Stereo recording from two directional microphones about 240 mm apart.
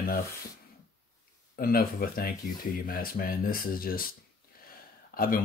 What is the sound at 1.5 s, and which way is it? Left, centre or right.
Speech, left.